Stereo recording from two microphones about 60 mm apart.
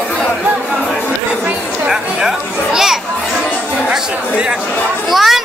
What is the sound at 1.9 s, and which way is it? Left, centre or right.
Chatter, centre.